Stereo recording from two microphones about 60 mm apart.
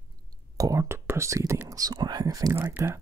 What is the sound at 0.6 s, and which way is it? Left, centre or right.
Whispering, right.